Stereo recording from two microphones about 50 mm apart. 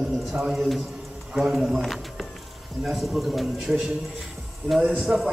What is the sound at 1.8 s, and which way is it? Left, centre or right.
A man's voice, centre.